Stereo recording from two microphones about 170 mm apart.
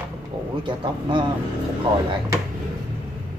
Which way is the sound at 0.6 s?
25° right (ahead or behind).